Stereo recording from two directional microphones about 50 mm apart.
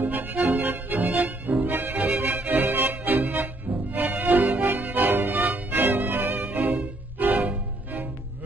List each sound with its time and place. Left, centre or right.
0.0 s music: right